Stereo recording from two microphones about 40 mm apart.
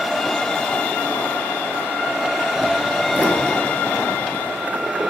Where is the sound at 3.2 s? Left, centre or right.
Left.